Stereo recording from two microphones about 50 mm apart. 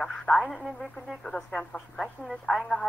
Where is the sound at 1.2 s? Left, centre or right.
Centre.